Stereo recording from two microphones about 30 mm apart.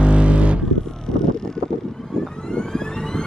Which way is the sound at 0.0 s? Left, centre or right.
Right.